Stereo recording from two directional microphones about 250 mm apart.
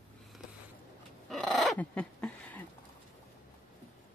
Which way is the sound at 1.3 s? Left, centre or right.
Centre.